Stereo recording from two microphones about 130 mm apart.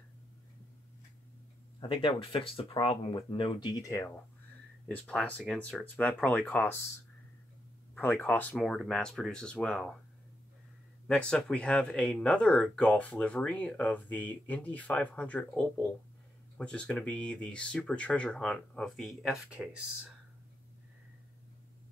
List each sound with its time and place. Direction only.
1.8 s speech: 40° left (ahead or behind)
4.8 s speech: 10° left (ahead or behind)
7.9 s speech: 15° left (ahead or behind)
11.1 s speech: 5° left (ahead or behind)